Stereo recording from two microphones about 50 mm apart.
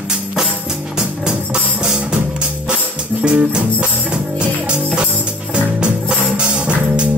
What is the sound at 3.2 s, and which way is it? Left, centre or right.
Music, right.